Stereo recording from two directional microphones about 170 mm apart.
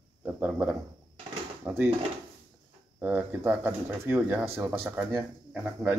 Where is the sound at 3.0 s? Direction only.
10° right (ahead or behind).